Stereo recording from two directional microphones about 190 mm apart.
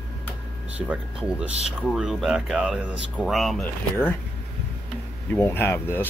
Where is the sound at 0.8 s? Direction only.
5° right (ahead or behind).